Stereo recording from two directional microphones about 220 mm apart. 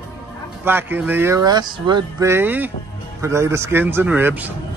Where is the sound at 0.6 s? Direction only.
10° right (ahead or behind).